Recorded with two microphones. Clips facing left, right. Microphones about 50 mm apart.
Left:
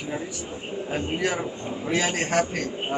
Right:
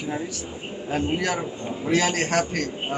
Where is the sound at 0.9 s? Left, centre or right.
Centre.